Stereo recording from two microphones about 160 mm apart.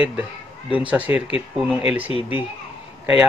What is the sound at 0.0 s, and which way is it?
Speech, 10° right (ahead or behind).